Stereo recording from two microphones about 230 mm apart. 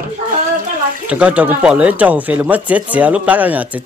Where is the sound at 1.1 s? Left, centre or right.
Centre.